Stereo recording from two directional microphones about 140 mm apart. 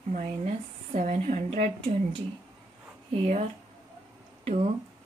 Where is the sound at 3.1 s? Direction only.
50° right (ahead or behind).